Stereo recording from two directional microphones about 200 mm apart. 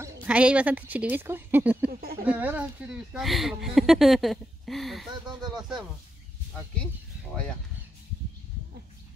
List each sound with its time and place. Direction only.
0.0 s speech: 5° right (ahead or behind)
1.9 s speech: 50° right (ahead or behind)
2.2 s speech: 10° right (ahead or behind)